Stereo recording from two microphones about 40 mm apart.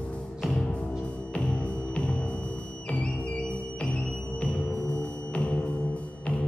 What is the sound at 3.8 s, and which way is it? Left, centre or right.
Music, left.